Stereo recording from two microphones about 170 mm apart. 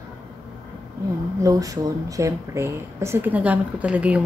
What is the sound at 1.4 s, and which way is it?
Speech, 20° right (ahead or behind).